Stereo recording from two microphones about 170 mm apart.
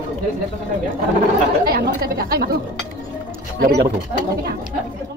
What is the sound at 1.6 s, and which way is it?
Speech, 65° right (ahead or behind).